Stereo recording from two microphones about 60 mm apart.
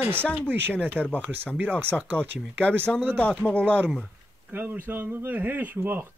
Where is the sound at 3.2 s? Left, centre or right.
Left.